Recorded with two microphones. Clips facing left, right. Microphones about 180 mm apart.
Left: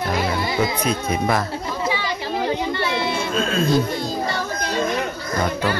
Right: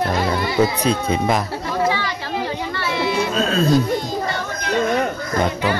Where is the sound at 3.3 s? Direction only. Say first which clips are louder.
Even; 35° right (ahead or behind).